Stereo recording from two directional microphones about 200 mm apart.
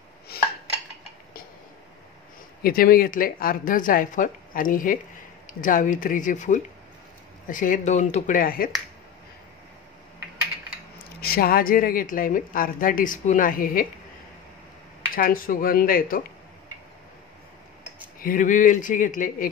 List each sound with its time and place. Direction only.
0.3 s dishes: 50° left (ahead or behind)
2.6 s a woman's voice: 45° left (ahead or behind)
11.1 s a woman's voice: 50° left (ahead or behind)
15.1 s a woman's voice: 45° left (ahead or behind)
18.2 s speech: 40° left (ahead or behind)